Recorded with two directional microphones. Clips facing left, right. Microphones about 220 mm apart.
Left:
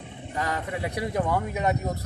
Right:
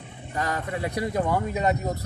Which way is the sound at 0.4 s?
5° left (ahead or behind).